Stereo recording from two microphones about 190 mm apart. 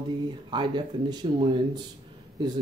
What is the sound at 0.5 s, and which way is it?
Speech, 25° right (ahead or behind).